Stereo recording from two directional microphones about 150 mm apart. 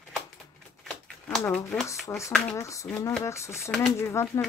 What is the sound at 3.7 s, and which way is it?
Speech, 5° left (ahead or behind).